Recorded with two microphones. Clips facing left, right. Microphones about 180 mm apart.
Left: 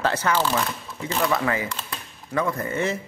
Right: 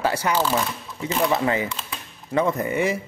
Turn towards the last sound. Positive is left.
turn(degrees=-15)  # may be behind; listen again after turning